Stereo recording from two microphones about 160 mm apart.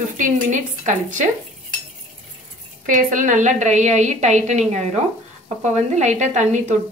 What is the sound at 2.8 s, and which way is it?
Speech, 55° right (ahead or behind).